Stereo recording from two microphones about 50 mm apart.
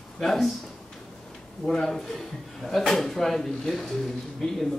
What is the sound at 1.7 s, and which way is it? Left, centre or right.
A man's voice, centre.